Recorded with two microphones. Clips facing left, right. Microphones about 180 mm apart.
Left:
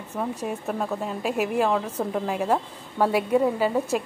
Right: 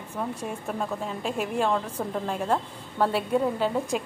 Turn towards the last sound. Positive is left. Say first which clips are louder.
# left 3 dB
turn(degrees=5)  # may be behind; listen again after turning